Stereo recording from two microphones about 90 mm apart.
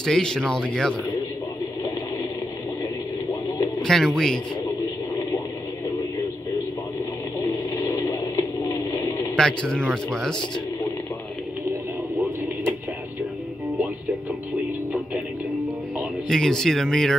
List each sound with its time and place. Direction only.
0.0 s speech: 5° left (ahead or behind)
3.8 s speech: 5° left (ahead or behind)
7.3 s radio: 35° left (ahead or behind)
9.4 s speech: 10° left (ahead or behind)
16.3 s speech: 5° left (ahead or behind)